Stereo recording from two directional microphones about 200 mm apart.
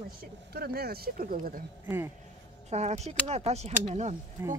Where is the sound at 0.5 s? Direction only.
50° right (ahead or behind).